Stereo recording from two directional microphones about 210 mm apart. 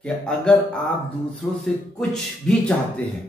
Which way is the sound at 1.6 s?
5° left (ahead or behind).